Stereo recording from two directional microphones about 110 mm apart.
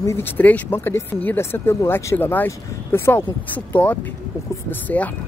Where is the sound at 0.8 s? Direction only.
25° left (ahead or behind).